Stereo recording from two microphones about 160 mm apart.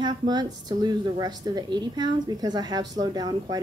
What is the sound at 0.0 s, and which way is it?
A woman's voice, 25° right (ahead or behind).